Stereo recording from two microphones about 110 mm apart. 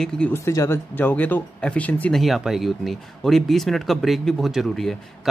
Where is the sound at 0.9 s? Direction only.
15° left (ahead or behind).